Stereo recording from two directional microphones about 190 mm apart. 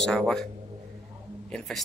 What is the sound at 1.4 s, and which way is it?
Speech, centre (ahead or behind).